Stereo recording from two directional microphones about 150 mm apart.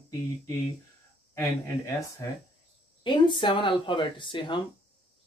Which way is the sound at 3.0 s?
35° left (ahead or behind).